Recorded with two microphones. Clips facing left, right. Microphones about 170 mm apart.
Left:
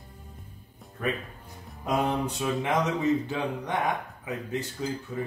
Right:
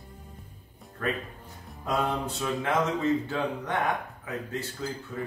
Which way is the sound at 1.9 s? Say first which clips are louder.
Left 2 dB; 15° left (ahead or behind).